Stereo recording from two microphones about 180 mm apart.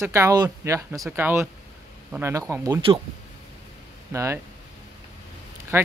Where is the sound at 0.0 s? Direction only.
15° right (ahead or behind).